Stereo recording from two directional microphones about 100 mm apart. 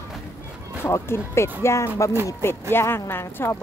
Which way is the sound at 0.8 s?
25° left (ahead or behind).